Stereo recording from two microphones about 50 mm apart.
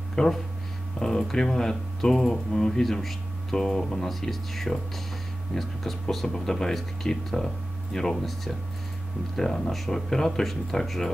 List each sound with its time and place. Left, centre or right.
0.1 s speech: centre